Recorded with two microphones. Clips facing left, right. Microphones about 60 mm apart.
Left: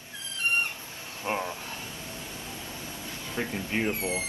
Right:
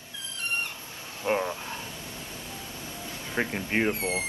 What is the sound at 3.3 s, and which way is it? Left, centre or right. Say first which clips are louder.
Speech: right 3 dB; right.